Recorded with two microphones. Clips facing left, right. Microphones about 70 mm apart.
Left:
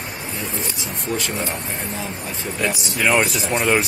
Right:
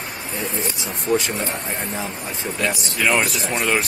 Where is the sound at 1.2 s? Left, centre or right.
Right.